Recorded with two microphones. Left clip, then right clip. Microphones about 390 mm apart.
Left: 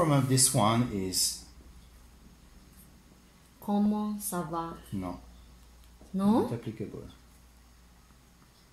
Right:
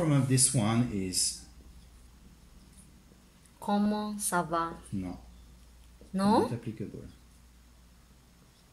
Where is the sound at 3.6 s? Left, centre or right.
Right.